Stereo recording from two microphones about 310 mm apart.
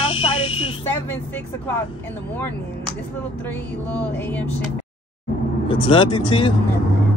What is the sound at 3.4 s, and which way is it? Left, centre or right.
Music, centre.